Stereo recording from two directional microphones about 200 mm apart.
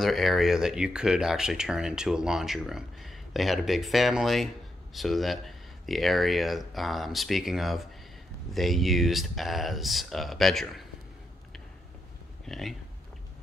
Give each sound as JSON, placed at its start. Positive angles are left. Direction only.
{"t": 0.0, "sound": "speech", "side_deg": 0}
{"t": 12.4, "sound": "speech", "side_deg": 0}